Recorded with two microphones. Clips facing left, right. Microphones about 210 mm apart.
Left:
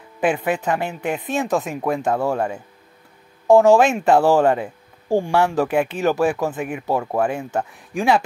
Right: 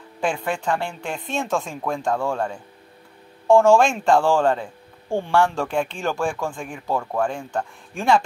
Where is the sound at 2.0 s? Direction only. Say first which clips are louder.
Left 1 dB; 20° left (ahead or behind).